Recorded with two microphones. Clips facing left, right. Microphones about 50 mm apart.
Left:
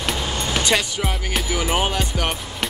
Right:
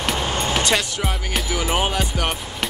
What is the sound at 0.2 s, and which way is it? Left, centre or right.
Music, right.